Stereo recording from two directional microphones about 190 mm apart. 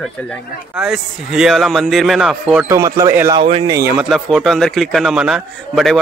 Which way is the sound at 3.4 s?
30° right (ahead or behind).